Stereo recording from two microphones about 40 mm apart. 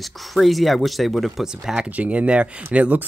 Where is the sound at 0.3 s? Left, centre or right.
Centre.